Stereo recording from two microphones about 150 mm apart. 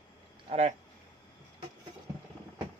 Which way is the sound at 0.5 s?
50° right (ahead or behind).